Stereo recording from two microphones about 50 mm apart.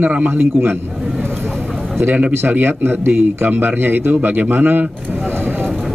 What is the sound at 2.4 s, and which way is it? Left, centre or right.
A man's voice, right.